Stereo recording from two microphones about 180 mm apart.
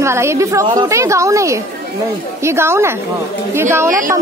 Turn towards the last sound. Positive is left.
turn(degrees=-15)  # may be behind; listen again after turning